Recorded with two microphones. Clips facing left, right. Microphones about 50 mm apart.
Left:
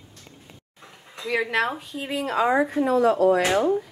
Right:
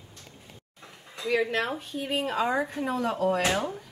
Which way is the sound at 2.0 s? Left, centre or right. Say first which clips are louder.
Left 4 dB; left.